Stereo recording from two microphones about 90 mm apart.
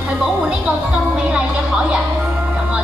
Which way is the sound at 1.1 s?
10° right (ahead or behind).